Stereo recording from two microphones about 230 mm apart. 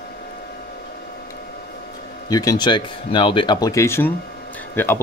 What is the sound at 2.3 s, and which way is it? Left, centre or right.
Speech, centre.